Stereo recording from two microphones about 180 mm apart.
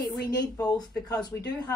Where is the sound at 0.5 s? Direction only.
20° left (ahead or behind).